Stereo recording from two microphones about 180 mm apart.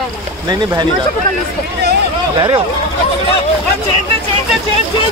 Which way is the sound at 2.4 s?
30° right (ahead or behind).